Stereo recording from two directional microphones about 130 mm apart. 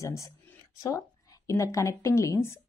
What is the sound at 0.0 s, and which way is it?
A woman's voice, 25° left (ahead or behind).